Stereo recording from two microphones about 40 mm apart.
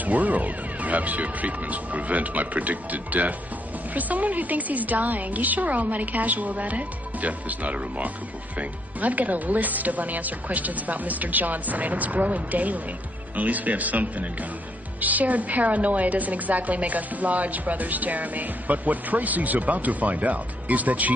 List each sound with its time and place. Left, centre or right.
0.0 s a woman's voice: right